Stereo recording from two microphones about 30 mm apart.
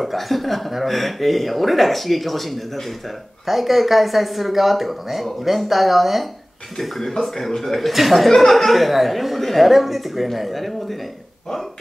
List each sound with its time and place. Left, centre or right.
0.0 s speech: centre
6.8 s speech: centre
7.9 s speech: centre
8.4 s speech: centre